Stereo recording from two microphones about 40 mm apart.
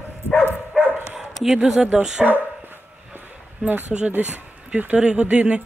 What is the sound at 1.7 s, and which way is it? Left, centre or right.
Speech, right.